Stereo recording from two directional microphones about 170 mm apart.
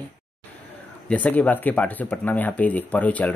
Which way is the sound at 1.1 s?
10° left (ahead or behind).